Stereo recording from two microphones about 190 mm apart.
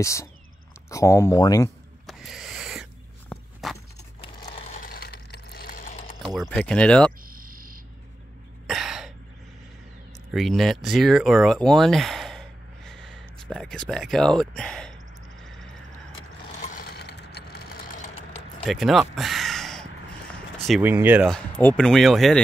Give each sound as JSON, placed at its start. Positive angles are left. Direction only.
{"t": 0.0, "sound": "speech", "side_deg": 15}
{"t": 2.0, "sound": "owl", "side_deg": 0}
{"t": 3.6, "sound": "a sound", "side_deg": 0}
{"t": 4.5, "sound": "a sound", "side_deg": 40}
{"t": 6.5, "sound": "speech", "side_deg": 5}
{"t": 7.2, "sound": "a sound", "side_deg": -45}
{"t": 8.6, "sound": "throat clearing", "side_deg": 0}
{"t": 10.3, "sound": "speech", "side_deg": 0}
{"t": 16.9, "sound": "vehicle", "side_deg": 60}
{"t": 18.6, "sound": "a sound", "side_deg": 0}
{"t": 20.8, "sound": "speech", "side_deg": -10}
{"t": 21.3, "sound": "speech", "side_deg": 5}